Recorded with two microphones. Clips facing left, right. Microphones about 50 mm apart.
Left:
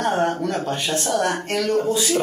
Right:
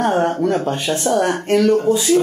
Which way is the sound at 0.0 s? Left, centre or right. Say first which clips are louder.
Right 4 dB; right.